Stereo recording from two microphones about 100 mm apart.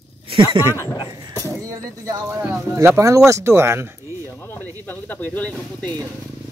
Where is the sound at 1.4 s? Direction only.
35° right (ahead or behind).